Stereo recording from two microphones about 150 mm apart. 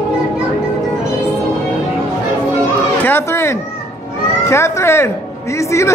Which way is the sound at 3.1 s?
15° left (ahead or behind).